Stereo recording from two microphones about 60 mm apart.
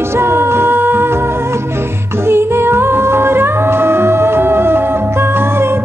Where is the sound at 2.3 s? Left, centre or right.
Right.